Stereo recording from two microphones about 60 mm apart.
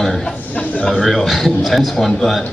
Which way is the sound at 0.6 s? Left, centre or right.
Centre.